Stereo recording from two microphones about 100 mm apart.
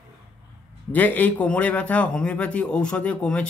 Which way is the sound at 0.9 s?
15° left (ahead or behind).